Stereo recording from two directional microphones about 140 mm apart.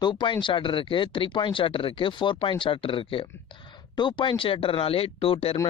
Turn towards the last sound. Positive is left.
turn(degrees=45)  # may be behind; listen again after turning